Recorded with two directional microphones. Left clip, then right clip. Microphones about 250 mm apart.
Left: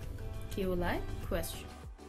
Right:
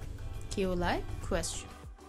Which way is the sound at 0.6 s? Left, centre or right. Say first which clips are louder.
Right 3 dB; centre.